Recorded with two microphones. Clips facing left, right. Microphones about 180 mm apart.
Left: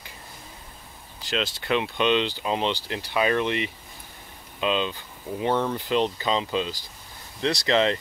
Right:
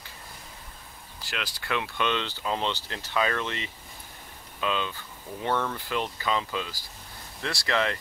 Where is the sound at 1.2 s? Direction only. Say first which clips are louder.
Left 8 dB; 25° left (ahead or behind).